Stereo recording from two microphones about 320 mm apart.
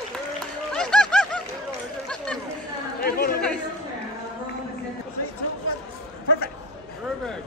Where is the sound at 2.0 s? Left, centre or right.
Centre.